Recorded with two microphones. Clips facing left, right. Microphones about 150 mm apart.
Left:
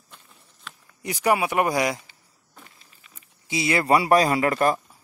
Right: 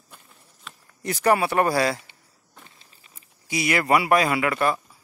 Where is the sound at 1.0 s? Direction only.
10° left (ahead or behind).